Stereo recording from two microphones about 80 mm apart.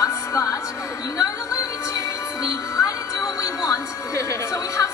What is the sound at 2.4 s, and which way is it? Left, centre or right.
Music, left.